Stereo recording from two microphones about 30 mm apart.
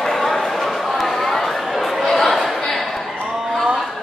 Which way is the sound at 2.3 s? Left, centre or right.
Centre.